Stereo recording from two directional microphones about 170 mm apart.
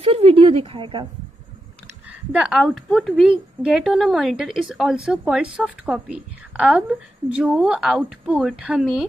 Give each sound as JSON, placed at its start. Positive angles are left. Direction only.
{"t": 0.0, "sound": "speech", "side_deg": -35}
{"t": 2.0, "sound": "a woman's voice", "side_deg": -5}